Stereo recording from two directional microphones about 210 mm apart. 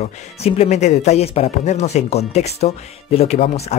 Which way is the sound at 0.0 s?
30° left (ahead or behind).